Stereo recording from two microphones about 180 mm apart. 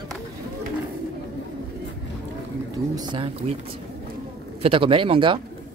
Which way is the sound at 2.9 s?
25° right (ahead or behind).